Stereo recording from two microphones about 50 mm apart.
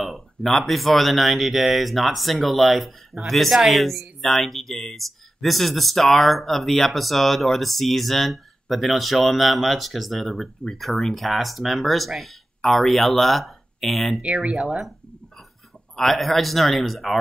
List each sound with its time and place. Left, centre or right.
0.0 s speech: centre
14.2 s speech: right
14.6 s speech: centre
16.0 s speech: centre